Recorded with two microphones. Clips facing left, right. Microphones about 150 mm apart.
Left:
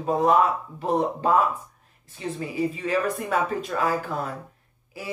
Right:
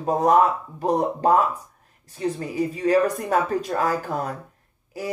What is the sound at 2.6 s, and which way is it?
Speech, 40° right (ahead or behind).